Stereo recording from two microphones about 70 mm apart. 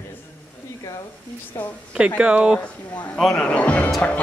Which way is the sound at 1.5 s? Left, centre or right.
Left.